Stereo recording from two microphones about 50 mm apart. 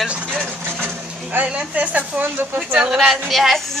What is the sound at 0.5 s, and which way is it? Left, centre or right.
Vehicle, right.